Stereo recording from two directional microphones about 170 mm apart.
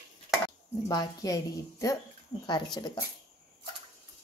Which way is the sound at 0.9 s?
20° left (ahead or behind).